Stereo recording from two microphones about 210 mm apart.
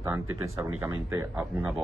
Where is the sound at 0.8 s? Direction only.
15° right (ahead or behind).